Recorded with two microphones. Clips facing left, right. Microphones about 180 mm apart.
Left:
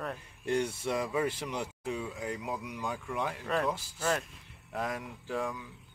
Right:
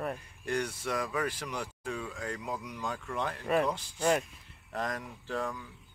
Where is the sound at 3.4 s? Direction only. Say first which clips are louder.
Right 5 dB; 10° right (ahead or behind).